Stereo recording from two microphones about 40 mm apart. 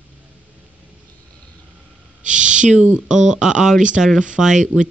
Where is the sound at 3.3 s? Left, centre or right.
Centre.